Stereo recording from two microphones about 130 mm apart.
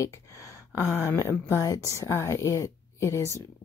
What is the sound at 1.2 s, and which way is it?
Speech, 20° left (ahead or behind).